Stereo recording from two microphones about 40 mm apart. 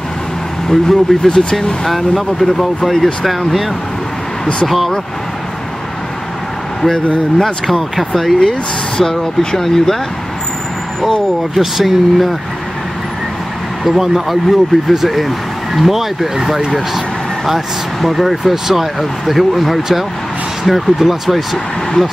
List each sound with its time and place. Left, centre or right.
0.7 s speech: centre
1.3 s speech: centre
1.9 s speech: centre
7.3 s speech: centre
11.5 s speech: centre
13.8 s speech: centre
18.0 s speech: centre